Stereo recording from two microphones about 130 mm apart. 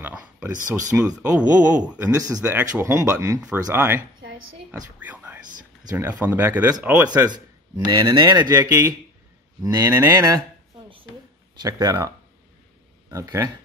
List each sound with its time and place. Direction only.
0.0 s a sound: 15° right (ahead or behind)
1.0 s speech: 10° right (ahead or behind)
2.1 s speech: 30° right (ahead or behind)
2.4 s speech: 15° right (ahead or behind)
5.0 s whispering: 15° right (ahead or behind)
6.0 s speech: 15° right (ahead or behind)
7.2 s speech: 30° right (ahead or behind)
11.6 s speech: 30° right (ahead or behind)
13.1 s speech: 25° right (ahead or behind)